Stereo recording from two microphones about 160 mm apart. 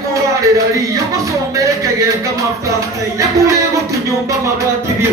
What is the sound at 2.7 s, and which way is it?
Music, 20° right (ahead or behind).